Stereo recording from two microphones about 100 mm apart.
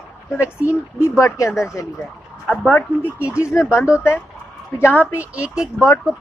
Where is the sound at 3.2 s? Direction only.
30° left (ahead or behind).